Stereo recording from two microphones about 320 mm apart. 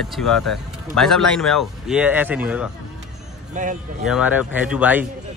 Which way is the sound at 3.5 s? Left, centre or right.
Right.